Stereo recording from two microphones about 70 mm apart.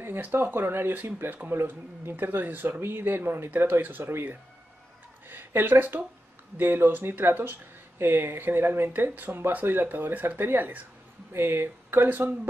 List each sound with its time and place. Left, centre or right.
0.0 s speech: right